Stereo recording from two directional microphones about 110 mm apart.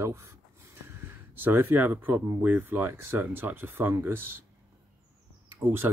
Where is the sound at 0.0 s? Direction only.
25° right (ahead or behind).